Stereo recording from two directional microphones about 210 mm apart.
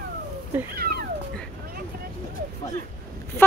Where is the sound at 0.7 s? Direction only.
45° right (ahead or behind).